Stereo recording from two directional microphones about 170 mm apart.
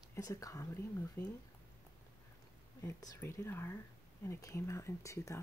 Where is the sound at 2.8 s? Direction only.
15° left (ahead or behind).